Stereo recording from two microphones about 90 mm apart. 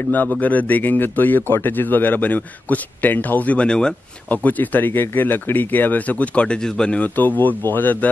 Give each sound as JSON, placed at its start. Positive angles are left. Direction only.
{"t": 0.1, "sound": "speech", "side_deg": 20}